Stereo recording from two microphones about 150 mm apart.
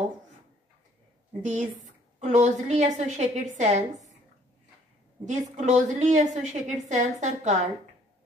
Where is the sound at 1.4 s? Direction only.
55° right (ahead or behind).